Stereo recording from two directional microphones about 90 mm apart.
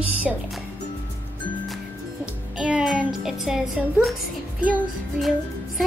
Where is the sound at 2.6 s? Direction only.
5° right (ahead or behind).